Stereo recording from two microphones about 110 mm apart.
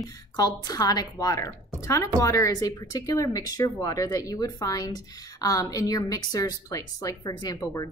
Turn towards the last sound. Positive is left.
turn(degrees=40)  # may be behind; listen again after turning